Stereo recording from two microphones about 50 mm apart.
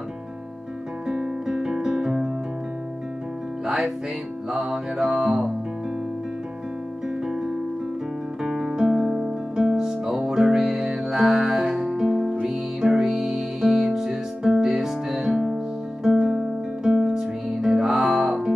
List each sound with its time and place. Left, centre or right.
1.0 s guitar: centre
3.6 s music: centre
7.2 s music: centre